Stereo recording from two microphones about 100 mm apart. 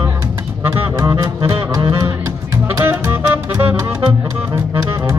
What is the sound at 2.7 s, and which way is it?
Music, 25° right (ahead or behind).